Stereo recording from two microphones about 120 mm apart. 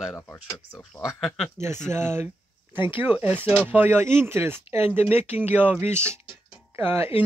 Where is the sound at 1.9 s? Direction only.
20° right (ahead or behind).